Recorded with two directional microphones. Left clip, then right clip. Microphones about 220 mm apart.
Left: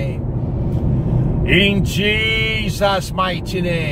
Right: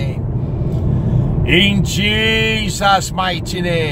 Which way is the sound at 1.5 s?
20° right (ahead or behind).